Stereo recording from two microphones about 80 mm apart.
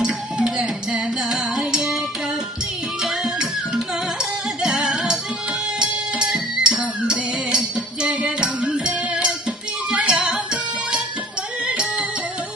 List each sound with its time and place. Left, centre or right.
0.0 s music: centre
3.0 s music: centre